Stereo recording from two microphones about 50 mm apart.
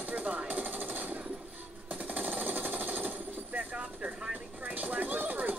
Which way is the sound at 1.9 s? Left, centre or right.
Right.